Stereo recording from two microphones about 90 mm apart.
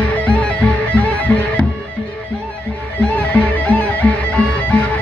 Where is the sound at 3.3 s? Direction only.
15° left (ahead or behind).